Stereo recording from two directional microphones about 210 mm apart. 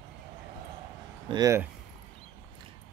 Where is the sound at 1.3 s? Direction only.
15° right (ahead or behind).